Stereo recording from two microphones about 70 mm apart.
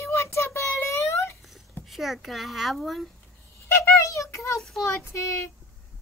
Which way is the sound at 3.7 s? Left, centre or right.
Left.